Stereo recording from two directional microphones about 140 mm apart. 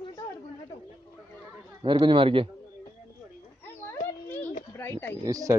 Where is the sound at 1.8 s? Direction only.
35° right (ahead or behind).